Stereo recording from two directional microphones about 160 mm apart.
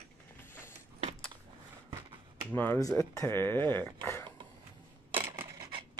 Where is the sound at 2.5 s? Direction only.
10° left (ahead or behind).